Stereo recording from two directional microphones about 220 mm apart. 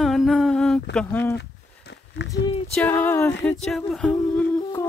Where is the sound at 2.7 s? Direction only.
5° left (ahead or behind).